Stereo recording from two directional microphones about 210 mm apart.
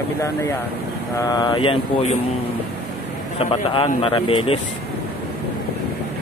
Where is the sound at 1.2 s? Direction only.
20° left (ahead or behind).